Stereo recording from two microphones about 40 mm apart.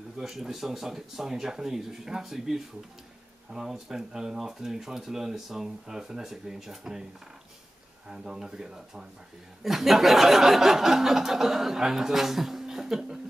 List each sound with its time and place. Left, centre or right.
0.2 s speech: centre
8.1 s speech: centre